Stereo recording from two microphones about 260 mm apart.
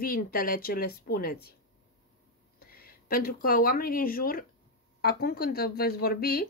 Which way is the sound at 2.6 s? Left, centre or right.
Left.